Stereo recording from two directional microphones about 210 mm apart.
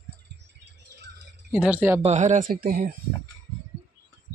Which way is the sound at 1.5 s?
5° right (ahead or behind).